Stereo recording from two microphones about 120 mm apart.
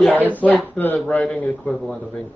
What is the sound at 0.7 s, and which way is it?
A man's voice, 15° left (ahead or behind).